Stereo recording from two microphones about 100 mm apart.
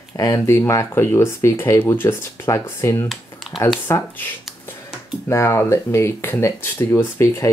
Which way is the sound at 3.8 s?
25° left (ahead or behind).